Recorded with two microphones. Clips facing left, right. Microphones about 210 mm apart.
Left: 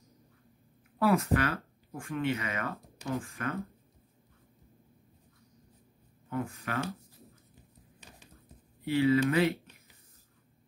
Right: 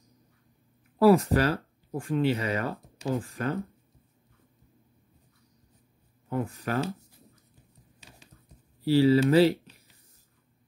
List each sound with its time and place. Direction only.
0.9 s speech: 30° right (ahead or behind)
6.3 s speech: 30° right (ahead or behind)
8.8 s speech: 30° right (ahead or behind)